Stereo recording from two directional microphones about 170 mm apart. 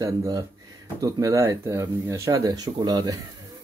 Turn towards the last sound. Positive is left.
turn(degrees=-20)  # may be behind; listen again after turning